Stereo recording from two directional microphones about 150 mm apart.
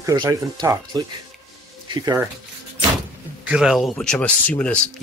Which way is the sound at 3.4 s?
5° right (ahead or behind).